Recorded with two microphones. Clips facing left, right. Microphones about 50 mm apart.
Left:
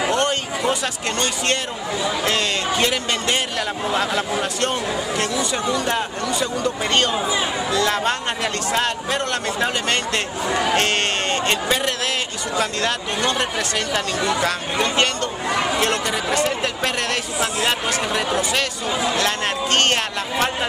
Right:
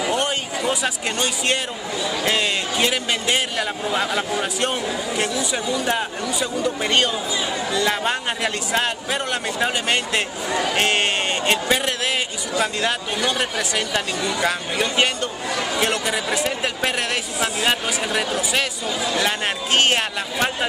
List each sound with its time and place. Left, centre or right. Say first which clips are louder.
0.1 s a sound: left 2 dB; centre
2.2 s a man's voice: right 2 dB; centre
15.5 s chatter: left 4 dB; centre
15.8 s a man's voice: left 1 dB; centre
18.9 s speech: left 3 dB; left
19.1 s a man's voice: left 1 dB; centre